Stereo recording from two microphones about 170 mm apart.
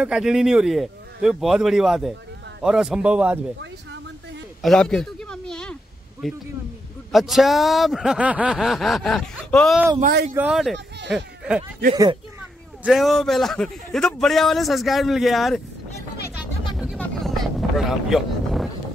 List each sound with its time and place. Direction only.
0.0 s speech: 5° right (ahead or behind)
4.6 s a sound: centre (ahead or behind)
6.2 s speech: centre (ahead or behind)
10.0 s speech: 60° right (ahead or behind)
10.3 s speech: 5° right (ahead or behind)
11.9 s speech: 25° right (ahead or behind)
12.8 s speech: centre (ahead or behind)
16.7 s vehicle: 5° right (ahead or behind)
17.0 s boat: centre (ahead or behind)